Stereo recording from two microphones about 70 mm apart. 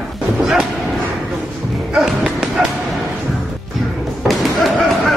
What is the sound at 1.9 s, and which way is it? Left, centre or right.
Music, centre.